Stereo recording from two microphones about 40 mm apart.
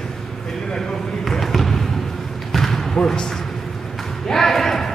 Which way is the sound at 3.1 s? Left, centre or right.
Centre.